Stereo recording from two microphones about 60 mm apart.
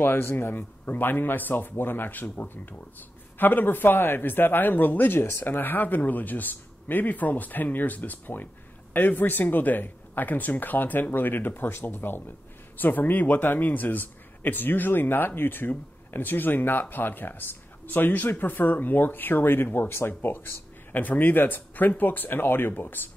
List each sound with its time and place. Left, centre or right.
0.0 s a man's voice: left